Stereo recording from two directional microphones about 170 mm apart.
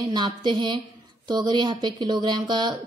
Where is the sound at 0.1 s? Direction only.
25° right (ahead or behind).